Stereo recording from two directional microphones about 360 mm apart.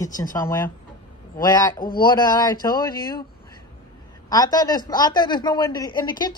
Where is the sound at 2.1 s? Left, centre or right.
Centre.